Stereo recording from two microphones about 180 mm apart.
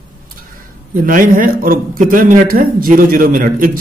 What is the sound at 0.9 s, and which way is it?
A man's voice, 50° right (ahead or behind).